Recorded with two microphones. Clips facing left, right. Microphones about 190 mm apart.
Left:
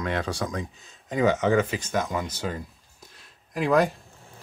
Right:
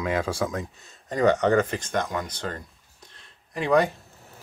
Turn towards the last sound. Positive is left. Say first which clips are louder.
# even
turn(degrees=0)  # may be behind; listen again after turning